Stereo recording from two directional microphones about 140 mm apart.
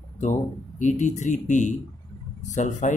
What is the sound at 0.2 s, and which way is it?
Speech, 60° left (ahead or behind).